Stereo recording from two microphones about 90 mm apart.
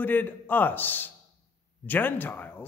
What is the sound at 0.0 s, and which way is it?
A man's voice, 20° left (ahead or behind).